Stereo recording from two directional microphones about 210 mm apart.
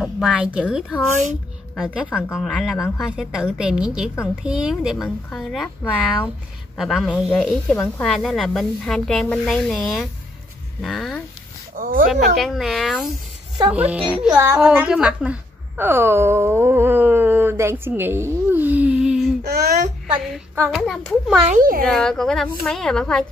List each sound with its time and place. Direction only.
0.0 s a woman's voice: 5° right (ahead or behind)
2.0 s a woman's voice: 5° left (ahead or behind)
6.8 s a woman's voice: centre (ahead or behind)
10.8 s a sound: centre (ahead or behind)
11.7 s speech: 40° right (ahead or behind)
12.4 s a woman's voice: centre (ahead or behind)
19.4 s a sound: 50° right (ahead or behind)
20.1 s a woman's voice: 10° right (ahead or behind)
21.5 s a child's voice: 40° right (ahead or behind)
21.8 s a woman's voice: centre (ahead or behind)